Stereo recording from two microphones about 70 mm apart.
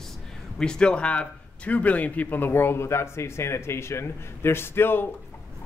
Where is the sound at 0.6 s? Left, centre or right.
Centre; by 5.0 s left.